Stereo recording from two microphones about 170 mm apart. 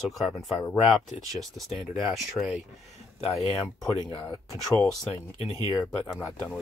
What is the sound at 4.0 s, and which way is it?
Speech, 25° left (ahead or behind).